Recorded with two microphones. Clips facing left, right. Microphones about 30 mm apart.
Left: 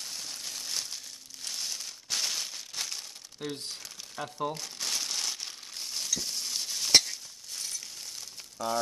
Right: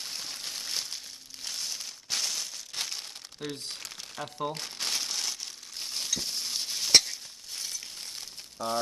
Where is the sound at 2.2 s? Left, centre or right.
Centre.